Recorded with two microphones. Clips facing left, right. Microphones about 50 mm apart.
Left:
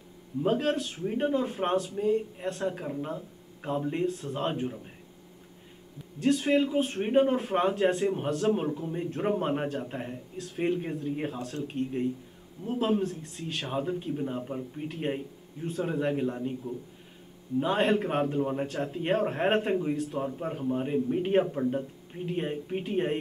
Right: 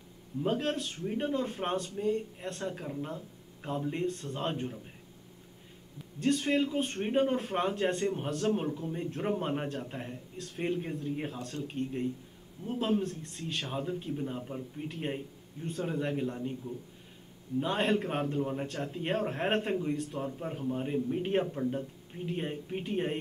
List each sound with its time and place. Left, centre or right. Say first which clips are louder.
0.4 s a man's voice: left 4 dB; centre
6.1 s a man's voice: left 4 dB; centre
17.6 s a man's voice: left 4 dB; centre